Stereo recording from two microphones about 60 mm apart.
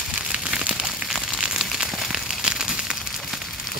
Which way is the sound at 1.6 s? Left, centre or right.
Centre.